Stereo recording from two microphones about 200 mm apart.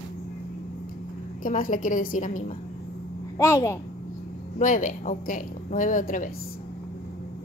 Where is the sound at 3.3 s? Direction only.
15° left (ahead or behind).